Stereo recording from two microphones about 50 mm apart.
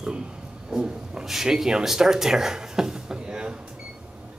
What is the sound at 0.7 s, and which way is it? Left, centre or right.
Speech, centre.